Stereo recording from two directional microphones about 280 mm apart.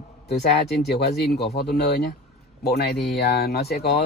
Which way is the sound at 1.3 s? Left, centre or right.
Left.